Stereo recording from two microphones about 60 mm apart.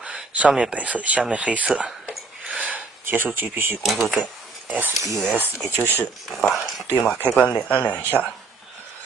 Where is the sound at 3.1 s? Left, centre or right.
Right.